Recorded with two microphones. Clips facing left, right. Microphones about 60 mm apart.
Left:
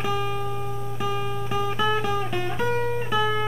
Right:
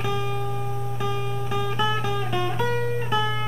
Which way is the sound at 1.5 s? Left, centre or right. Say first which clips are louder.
Left 1 dB; left.